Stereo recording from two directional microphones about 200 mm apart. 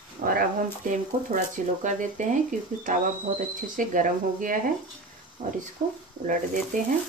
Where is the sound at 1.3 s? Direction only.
40° right (ahead or behind).